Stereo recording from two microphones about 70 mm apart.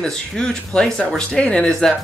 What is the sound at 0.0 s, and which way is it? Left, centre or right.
Speech, centre.